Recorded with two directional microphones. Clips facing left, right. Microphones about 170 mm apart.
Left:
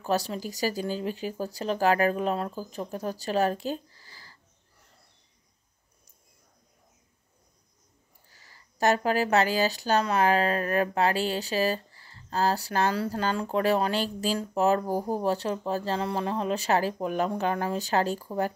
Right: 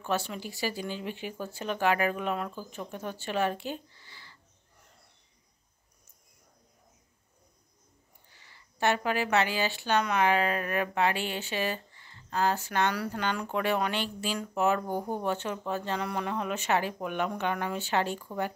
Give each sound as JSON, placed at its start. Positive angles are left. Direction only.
{"t": 0.0, "sound": "speech", "side_deg": 35}
{"t": 8.3, "sound": "speech", "side_deg": 40}